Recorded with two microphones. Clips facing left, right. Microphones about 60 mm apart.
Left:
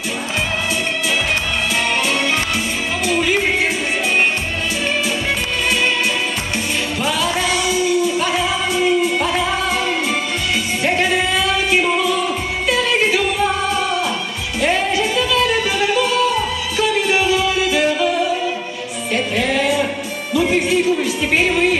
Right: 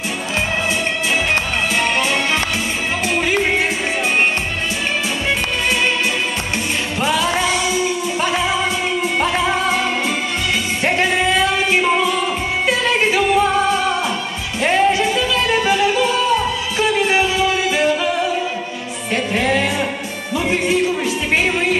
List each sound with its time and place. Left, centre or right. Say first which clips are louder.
1.1 s music: right 2 dB; right
3.1 s music: left 1 dB; right
7.0 s music: right 3 dB; right
16.7 s music: even; right